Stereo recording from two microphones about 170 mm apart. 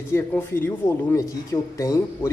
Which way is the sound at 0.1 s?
10° left (ahead or behind).